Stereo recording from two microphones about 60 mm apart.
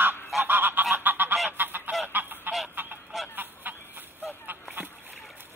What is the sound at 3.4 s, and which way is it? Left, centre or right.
Goose, right.